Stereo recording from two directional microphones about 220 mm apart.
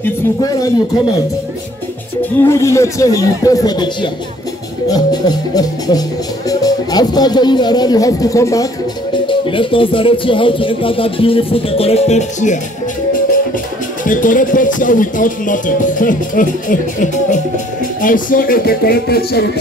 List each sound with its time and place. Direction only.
0.0 s speech: 15° left (ahead or behind)
2.4 s speech: 15° left (ahead or behind); by 12.5 s 30° left (ahead or behind)
14.0 s speech: 35° left (ahead or behind)
18.0 s speech: 40° left (ahead or behind)